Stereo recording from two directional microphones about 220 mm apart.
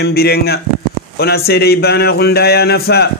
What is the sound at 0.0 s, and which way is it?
Speech, 45° left (ahead or behind).